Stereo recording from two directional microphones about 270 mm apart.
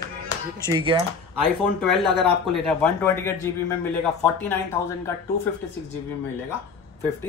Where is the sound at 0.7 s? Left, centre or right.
Centre.